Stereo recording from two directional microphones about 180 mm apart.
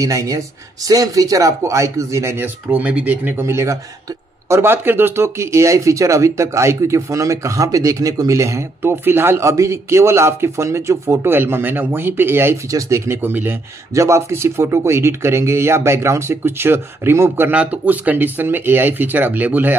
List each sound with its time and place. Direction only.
0.0 s speech: 20° right (ahead or behind)